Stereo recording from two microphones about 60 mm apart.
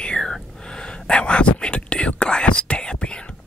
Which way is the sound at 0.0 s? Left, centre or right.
Centre.